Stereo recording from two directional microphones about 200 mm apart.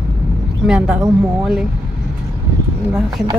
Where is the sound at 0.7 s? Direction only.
5° right (ahead or behind).